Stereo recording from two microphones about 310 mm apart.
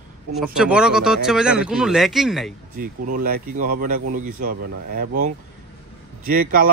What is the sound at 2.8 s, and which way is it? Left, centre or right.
A man's voice, right.